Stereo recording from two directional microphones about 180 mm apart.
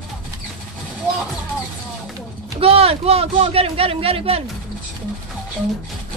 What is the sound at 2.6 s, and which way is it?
Speech, 35° right (ahead or behind).